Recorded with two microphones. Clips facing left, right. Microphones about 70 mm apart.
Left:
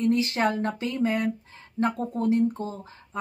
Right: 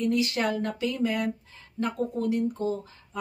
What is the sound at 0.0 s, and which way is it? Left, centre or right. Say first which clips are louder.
Speech: left 2 dB; left.